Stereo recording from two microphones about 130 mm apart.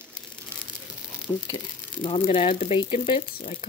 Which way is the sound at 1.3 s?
25° left (ahead or behind).